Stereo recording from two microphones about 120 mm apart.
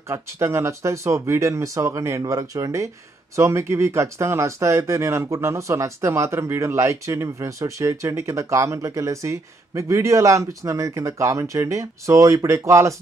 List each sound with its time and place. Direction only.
0.1 s speech: 20° right (ahead or behind)